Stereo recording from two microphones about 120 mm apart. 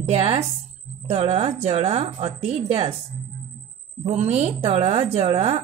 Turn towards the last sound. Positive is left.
turn(degrees=-50)  # may be behind; listen again after turning